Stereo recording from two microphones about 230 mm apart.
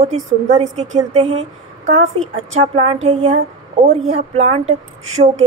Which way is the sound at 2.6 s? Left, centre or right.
Right.